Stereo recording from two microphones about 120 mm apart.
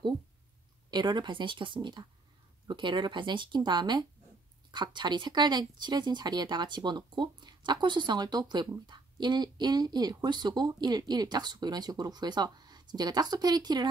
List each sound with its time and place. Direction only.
0.8 s speech: 35° right (ahead or behind)